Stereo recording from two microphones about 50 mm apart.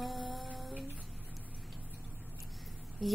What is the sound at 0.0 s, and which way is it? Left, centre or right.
Music, centre.